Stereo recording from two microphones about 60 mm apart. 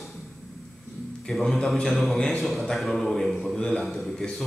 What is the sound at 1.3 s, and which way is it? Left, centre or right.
A man's voice, centre.